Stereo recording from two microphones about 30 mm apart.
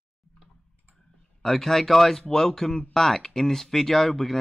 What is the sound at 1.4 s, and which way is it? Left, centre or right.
Speech, centre.